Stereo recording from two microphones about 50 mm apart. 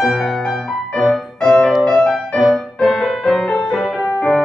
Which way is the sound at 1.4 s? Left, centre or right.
Centre.